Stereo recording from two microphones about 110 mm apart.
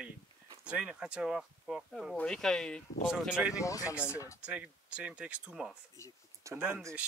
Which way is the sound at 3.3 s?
10° right (ahead or behind).